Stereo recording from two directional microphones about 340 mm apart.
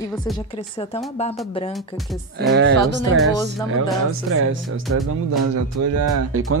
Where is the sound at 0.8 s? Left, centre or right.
Centre.